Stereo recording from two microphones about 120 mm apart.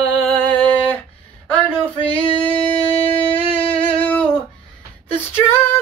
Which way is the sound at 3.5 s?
10° left (ahead or behind).